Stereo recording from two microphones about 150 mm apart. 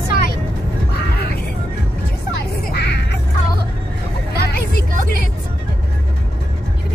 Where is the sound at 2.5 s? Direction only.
90° left.